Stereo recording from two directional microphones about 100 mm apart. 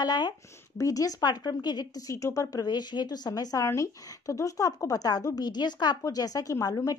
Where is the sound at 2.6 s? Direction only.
45° left (ahead or behind).